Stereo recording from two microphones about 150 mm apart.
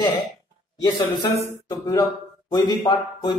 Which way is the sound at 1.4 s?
20° left (ahead or behind).